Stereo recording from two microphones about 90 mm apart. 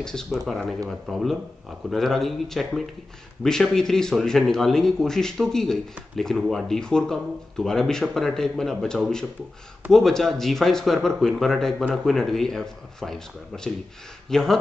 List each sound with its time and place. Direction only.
0.0 s speech: 5° left (ahead or behind)